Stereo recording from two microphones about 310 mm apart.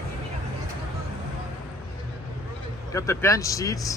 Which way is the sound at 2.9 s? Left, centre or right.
Centre.